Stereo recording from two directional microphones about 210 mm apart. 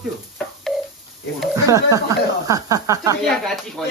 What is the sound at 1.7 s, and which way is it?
Speech, 15° right (ahead or behind).